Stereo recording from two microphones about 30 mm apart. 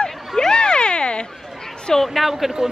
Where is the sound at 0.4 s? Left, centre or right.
Left.